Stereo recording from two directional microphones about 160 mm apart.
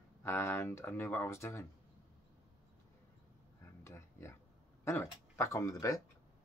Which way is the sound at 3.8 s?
15° left (ahead or behind).